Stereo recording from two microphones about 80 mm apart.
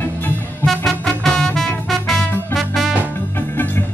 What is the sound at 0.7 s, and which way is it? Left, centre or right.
Music, centre.